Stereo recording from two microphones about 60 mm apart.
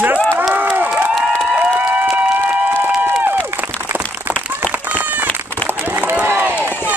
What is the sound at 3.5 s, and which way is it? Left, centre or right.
Applause, right.